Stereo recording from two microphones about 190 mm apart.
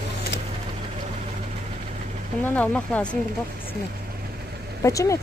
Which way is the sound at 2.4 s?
10° left (ahead or behind).